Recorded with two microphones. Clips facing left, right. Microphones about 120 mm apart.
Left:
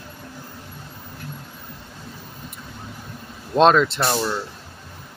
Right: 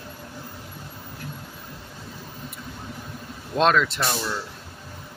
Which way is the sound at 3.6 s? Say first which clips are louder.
Left 5 dB; 25° left (ahead or behind).